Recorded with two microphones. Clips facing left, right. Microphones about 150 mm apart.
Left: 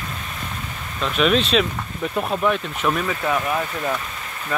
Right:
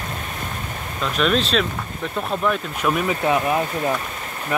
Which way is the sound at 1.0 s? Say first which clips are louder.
Left 1 dB; centre (ahead or behind).